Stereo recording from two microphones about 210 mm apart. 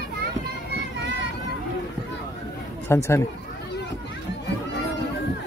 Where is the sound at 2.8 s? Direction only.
10° left (ahead or behind).